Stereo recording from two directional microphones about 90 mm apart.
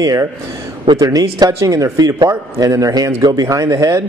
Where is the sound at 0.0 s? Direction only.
40° right (ahead or behind).